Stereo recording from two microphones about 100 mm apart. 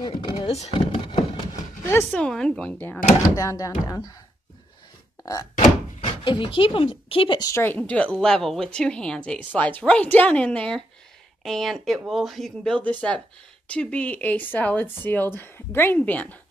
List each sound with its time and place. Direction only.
0.1 s vehicle: 65° left (ahead or behind)
0.7 s door: 60° left (ahead or behind)
2.0 s a woman's voice: 10° left (ahead or behind)
3.2 s speech: 35° left (ahead or behind)
5.2 s thunk: 35° left (ahead or behind)
5.9 s speech: 60° left (ahead or behind)
7.5 s a woman's voice: 15° left (ahead or behind)